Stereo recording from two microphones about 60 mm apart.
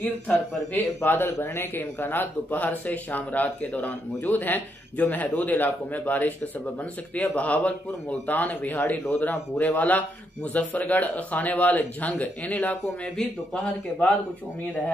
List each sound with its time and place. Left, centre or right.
0.0 s a man's voice: left